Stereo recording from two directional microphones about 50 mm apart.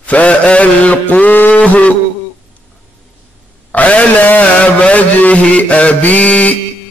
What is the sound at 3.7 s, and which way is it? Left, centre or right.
A man's voice, left.